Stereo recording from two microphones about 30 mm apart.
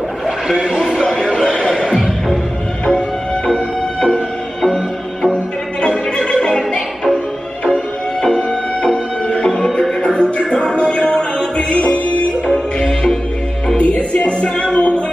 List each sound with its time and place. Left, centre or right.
0.6 s speech: centre
1.3 s a sound: left
1.7 s music: centre
3.4 s music: left
5.3 s music: left
10.1 s music: left
11.7 s music: left
12.5 s music: left
13.7 s music: left